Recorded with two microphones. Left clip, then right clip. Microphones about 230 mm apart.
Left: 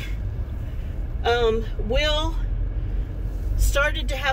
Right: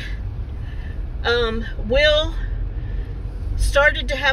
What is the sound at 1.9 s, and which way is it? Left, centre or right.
Speech, centre.